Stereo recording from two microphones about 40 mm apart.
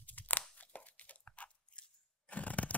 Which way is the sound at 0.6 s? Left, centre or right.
Left.